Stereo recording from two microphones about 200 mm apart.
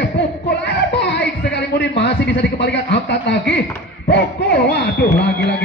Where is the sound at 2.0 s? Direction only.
60° left (ahead or behind).